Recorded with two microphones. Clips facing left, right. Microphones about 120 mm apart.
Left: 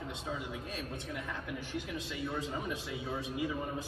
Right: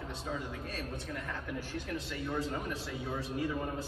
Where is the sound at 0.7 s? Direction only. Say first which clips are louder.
Right 1 dB; 15° left (ahead or behind).